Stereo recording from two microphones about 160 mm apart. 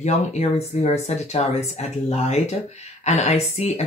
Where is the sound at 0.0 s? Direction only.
45° left (ahead or behind).